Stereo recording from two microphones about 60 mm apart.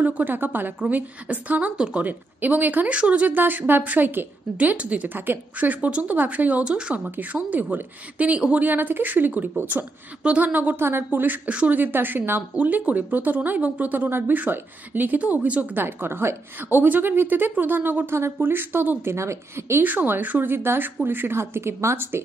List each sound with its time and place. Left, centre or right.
0.0 s speech: right
2.0 s speech: right
8.6 s a woman's voice: right
10.8 s a woman's voice: right
15.8 s a woman's voice: right
19.1 s a woman's voice: right
19.8 s a woman's voice: right